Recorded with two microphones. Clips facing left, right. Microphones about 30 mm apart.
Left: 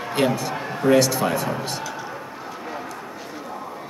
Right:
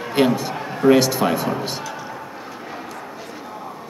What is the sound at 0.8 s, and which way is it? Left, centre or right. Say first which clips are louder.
Speech: right 3 dB; centre.